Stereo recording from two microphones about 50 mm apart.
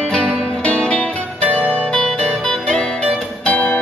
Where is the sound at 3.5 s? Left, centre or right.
Left.